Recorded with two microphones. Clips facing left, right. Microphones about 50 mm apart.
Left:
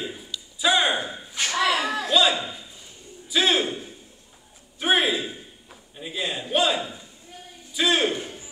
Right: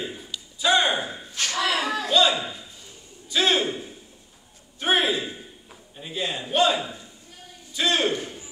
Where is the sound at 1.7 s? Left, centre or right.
Centre.